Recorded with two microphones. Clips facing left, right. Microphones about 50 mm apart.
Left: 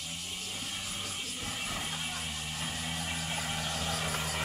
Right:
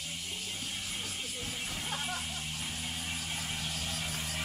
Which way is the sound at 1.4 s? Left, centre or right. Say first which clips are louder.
Left 4 dB; left.